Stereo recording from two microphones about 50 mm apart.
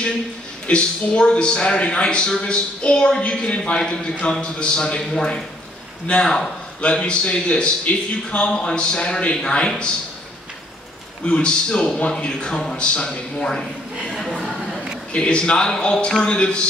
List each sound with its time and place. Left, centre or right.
0.7 s a man's voice: centre
11.2 s a man's voice: left; by 14.4 s centre
15.1 s a man's voice: centre